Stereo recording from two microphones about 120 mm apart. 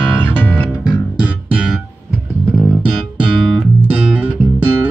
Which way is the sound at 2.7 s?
Centre (ahead or behind).